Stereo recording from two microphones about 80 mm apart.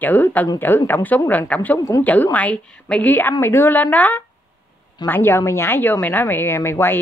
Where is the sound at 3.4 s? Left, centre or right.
Left.